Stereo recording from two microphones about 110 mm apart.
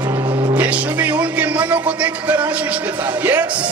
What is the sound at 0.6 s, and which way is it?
Music, 15° right (ahead or behind).